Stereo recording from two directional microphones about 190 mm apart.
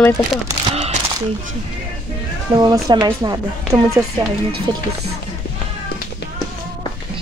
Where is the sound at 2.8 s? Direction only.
20° right (ahead or behind).